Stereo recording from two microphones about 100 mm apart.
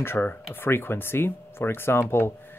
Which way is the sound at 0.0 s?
20° left (ahead or behind).